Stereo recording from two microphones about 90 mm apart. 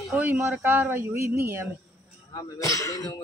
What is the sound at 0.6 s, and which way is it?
Speech, 35° right (ahead or behind).